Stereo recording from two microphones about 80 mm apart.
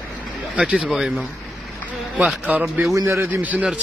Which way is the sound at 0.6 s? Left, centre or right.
Centre.